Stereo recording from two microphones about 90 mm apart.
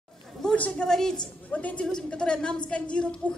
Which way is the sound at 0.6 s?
10° left (ahead or behind).